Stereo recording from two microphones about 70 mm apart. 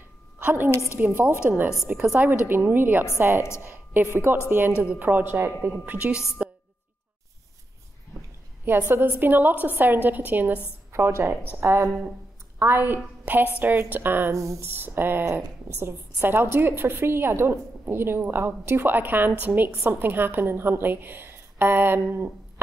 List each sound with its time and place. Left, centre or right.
0.4 s a woman's voice: right
5.9 s a woman's voice: centre
8.6 s a woman's voice: right
10.9 s a woman's voice: right
14.3 s speech: right
14.7 s a woman's voice: right